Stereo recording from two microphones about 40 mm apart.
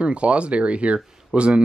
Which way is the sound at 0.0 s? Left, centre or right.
Right.